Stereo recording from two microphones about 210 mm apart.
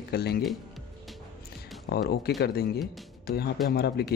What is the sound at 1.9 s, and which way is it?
Speech, 45° left (ahead or behind).